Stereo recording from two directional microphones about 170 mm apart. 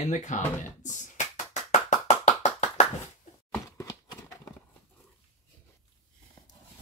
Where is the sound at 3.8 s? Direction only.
20° left (ahead or behind).